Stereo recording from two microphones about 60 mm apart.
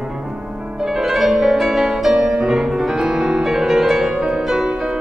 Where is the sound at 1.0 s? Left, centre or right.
Centre.